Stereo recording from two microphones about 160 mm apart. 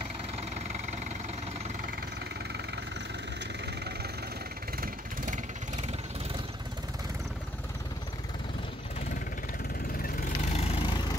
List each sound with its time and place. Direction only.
4.7 s vehicle: 60° right (ahead or behind)
10.0 s vehicle: 55° left (ahead or behind); by 11.1 s 25° left (ahead or behind)